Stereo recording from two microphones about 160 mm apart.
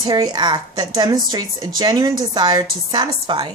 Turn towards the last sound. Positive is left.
turn(degrees=-25)  # may be behind; listen again after turning